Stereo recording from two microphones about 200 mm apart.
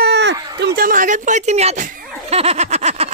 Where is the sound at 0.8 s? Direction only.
45° right (ahead or behind).